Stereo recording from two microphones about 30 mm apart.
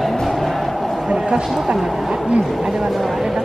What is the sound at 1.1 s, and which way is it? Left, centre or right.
Speech, right.